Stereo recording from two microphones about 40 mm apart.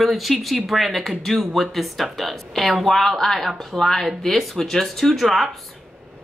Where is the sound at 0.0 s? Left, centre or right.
Centre.